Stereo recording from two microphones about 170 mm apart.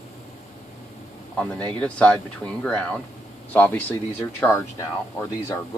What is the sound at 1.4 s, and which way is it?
Speech, 10° left (ahead or behind).